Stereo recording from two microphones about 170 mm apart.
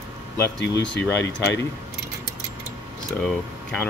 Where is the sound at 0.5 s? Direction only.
90° left.